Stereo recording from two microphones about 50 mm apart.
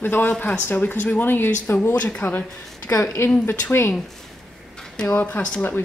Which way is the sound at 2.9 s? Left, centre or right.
Left.